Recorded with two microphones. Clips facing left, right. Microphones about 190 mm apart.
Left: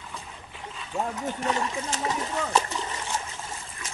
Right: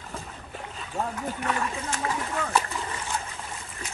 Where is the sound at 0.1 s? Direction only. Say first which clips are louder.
Right 3 dB; 40° right (ahead or behind).